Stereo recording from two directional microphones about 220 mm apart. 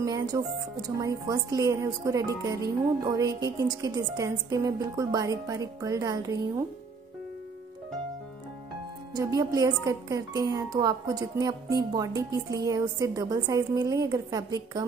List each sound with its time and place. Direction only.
0.0 s a woman's voice: 15° right (ahead or behind)
9.1 s a woman's voice: 15° right (ahead or behind)